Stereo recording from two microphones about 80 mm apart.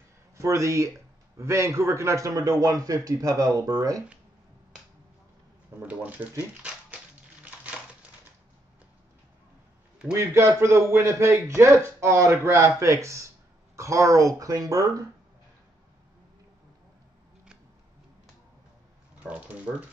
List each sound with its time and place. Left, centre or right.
0.4 s a man's voice: right
5.8 s speech: centre
7.4 s a sound: centre
10.1 s a man's voice: right
19.2 s speech: centre